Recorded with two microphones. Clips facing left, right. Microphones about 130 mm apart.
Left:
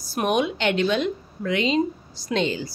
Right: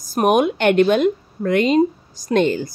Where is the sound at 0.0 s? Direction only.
45° right (ahead or behind).